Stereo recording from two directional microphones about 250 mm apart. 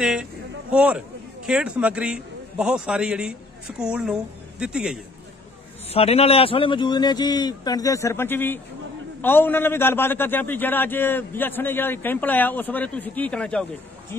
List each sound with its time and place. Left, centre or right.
0.0 s a man's voice: centre
5.9 s a man's voice: left; by 13.7 s centre